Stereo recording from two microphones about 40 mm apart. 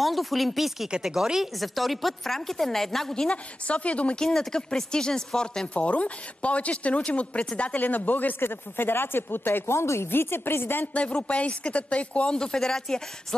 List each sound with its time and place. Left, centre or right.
0.0 s speech: centre
1.6 s a woman's voice: centre
3.3 s a woman's voice: left
4.4 s speech: centre
5.8 s a woman's voice: left
7.8 s speech: left
8.4 s speech: left
10.9 s a woman's voice: left
12.3 s a woman's voice: centre